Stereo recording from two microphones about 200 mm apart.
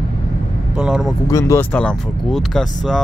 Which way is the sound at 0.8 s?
5° right (ahead or behind).